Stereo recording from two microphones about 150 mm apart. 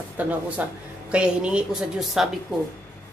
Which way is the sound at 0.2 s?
10° right (ahead or behind).